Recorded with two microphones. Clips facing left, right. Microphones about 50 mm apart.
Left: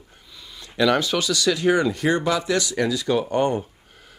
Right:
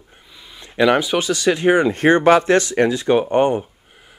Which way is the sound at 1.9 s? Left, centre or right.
Right.